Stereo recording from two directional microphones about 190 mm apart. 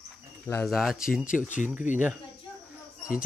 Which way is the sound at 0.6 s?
Centre (ahead or behind).